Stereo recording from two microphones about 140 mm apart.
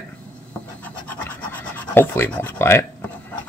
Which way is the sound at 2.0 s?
15° left (ahead or behind).